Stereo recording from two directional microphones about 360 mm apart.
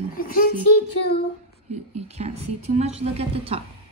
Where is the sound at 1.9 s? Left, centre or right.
Centre.